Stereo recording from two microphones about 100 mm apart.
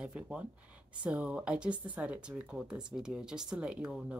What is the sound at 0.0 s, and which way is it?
Speech, 10° right (ahead or behind).